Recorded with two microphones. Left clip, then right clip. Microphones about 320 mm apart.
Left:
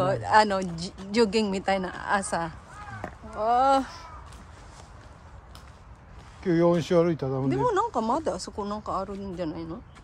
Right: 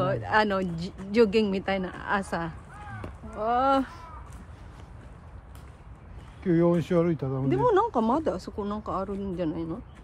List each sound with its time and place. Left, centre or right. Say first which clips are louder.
0.0 s speech: left 3 dB; centre
6.4 s speech: left 1 dB; left
7.4 s speech: right 3 dB; centre